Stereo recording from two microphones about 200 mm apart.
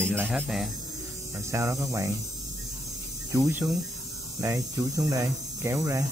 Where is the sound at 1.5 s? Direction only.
15° right (ahead or behind).